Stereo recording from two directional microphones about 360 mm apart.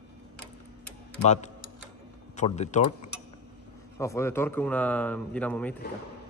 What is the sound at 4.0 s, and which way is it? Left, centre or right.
Speech, centre.